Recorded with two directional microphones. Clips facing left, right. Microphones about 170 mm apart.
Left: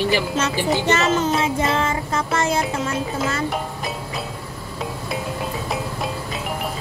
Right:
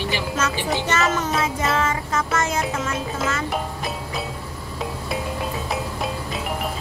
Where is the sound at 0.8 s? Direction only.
30° left (ahead or behind).